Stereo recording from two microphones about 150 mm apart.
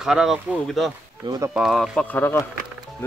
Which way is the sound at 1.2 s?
20° right (ahead or behind).